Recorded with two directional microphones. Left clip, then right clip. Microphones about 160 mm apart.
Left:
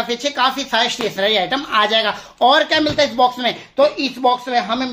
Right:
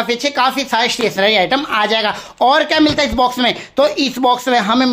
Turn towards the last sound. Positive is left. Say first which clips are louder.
# right 5 dB
turn(degrees=-50)  # may be behind; listen again after turning